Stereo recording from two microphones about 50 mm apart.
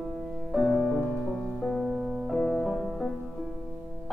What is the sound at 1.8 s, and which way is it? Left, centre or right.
Music, centre.